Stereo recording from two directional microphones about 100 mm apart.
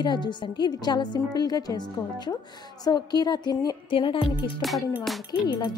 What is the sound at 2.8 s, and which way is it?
Speech, 45° left (ahead or behind).